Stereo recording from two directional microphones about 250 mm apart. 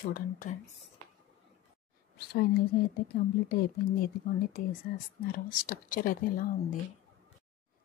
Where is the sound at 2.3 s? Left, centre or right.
Left.